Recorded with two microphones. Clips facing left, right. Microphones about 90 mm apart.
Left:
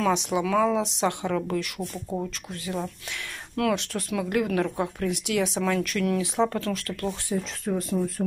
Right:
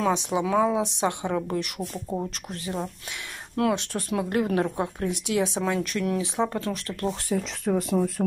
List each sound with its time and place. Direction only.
0.0 s speech: 25° right (ahead or behind)
1.8 s speech: 10° right (ahead or behind)
2.5 s speech: 35° right (ahead or behind)
7.7 s speech: 60° right (ahead or behind)